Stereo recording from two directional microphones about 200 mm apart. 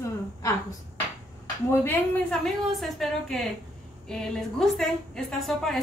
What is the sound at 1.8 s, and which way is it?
A woman's voice, 5° left (ahead or behind).